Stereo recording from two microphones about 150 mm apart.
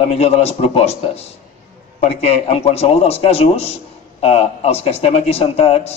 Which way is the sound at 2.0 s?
45° left (ahead or behind).